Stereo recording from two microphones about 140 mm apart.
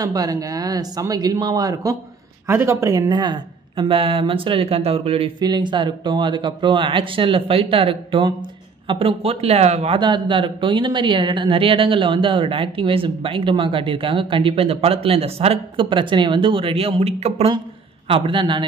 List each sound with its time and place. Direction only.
0.0 s a woman's voice: 25° right (ahead or behind); by 5.3 s 45° right (ahead or behind)
5.4 s a woman's voice: 30° right (ahead or behind); by 9.9 s 50° right (ahead or behind)
9.9 s a woman's voice: 35° right (ahead or behind)